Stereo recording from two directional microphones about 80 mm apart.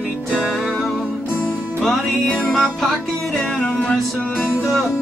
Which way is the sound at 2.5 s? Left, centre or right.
Centre.